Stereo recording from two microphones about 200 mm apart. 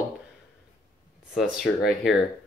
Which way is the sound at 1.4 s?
Centre (ahead or behind).